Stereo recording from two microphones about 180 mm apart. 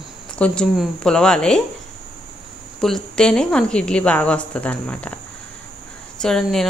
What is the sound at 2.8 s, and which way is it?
Speech, 5° left (ahead or behind).